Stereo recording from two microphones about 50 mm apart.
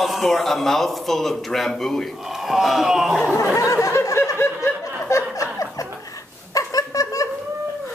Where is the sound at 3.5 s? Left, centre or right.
Left.